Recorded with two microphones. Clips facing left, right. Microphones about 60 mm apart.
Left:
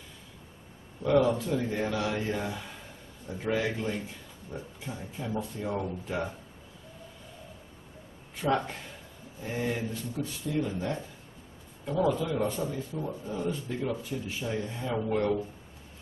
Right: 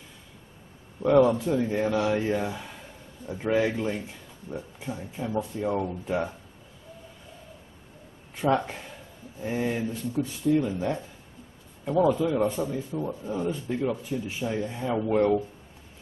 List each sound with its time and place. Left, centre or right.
1.0 s speech: centre
8.4 s speech: centre
15.1 s speech: right